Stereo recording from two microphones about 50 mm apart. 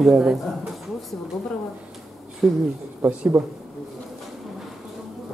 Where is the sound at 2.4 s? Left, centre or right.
Centre.